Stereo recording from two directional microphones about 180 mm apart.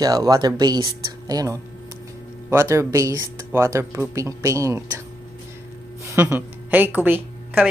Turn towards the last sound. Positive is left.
turn(degrees=-10)  # may be behind; listen again after turning